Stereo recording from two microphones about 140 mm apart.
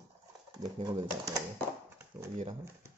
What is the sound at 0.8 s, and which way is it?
Speech, 30° right (ahead or behind).